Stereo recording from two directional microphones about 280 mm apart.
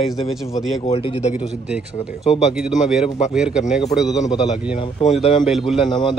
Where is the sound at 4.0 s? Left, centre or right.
Centre.